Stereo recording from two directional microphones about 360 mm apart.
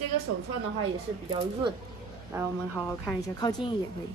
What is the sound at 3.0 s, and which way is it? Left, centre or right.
Speech, centre.